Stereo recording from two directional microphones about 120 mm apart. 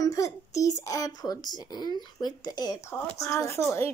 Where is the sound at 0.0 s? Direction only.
25° left (ahead or behind).